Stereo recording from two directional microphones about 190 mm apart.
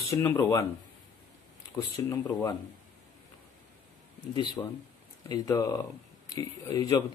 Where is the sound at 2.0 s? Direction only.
15° left (ahead or behind).